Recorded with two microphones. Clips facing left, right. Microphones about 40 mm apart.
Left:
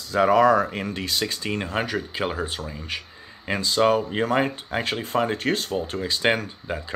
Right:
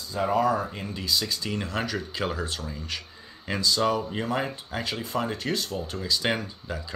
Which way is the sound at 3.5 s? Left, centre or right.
Left.